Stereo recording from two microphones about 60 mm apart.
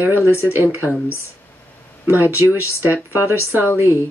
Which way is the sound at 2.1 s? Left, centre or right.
Right.